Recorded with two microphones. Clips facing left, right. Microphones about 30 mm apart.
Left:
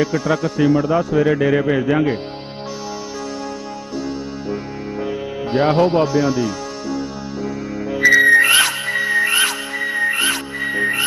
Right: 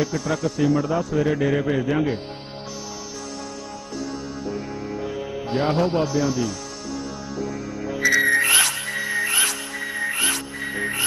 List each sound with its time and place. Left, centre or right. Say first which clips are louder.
0.0 s speech: left 5 dB; left
5.0 s music: left 5 dB; left